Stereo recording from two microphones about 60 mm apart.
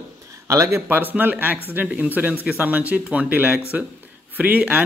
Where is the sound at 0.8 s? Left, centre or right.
Right.